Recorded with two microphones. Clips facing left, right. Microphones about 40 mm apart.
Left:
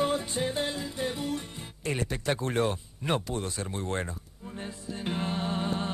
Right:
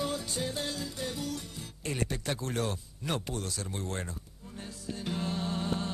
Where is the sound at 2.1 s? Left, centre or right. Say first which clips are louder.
Left 5 dB; left.